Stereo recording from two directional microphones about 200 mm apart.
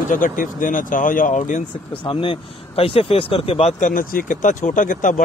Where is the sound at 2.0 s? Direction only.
25° left (ahead or behind).